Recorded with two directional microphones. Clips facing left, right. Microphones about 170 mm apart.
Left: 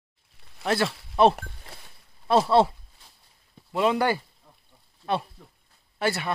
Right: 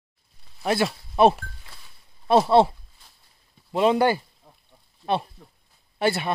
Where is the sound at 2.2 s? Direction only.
20° right (ahead or behind).